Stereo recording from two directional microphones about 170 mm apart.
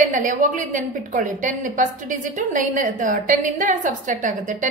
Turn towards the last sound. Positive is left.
turn(degrees=-50)  # may be behind; listen again after turning